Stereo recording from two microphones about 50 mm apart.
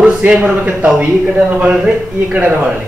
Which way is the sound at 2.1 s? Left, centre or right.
Right.